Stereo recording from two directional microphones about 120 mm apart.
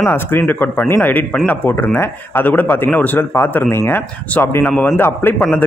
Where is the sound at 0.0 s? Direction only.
20° left (ahead or behind).